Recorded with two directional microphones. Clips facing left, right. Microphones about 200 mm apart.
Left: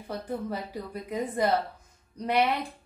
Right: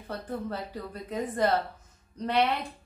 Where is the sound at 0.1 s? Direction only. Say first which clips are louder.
Left 1 dB; 10° left (ahead or behind).